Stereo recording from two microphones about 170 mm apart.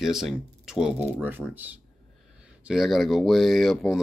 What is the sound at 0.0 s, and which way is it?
Speech, centre (ahead or behind).